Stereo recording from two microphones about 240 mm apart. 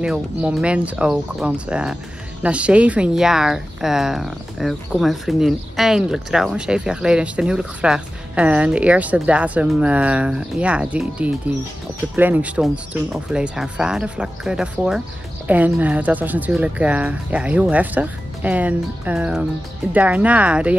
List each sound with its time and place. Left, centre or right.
0.0 s speech: centre